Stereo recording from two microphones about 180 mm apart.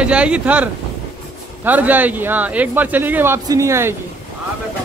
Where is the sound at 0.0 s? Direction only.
5° right (ahead or behind).